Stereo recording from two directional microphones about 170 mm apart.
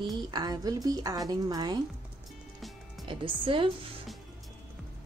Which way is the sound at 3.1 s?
30° right (ahead or behind).